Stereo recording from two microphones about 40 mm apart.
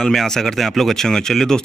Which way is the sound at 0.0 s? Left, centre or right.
Centre.